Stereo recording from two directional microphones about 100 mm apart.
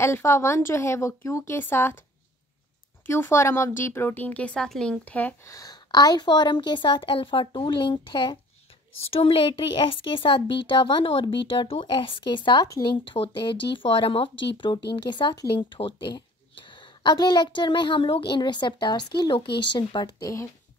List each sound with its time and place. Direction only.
0.0 s speech: 25° left (ahead or behind)
3.1 s speech: 25° left (ahead or behind)
5.4 s a woman's voice: 35° left (ahead or behind); by 8.4 s 55° left (ahead or behind)
9.1 s a woman's voice: 65° left (ahead or behind); by 20.4 s 35° left (ahead or behind)